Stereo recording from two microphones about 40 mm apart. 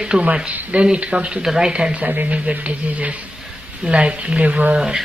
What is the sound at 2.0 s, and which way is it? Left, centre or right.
Speech, right.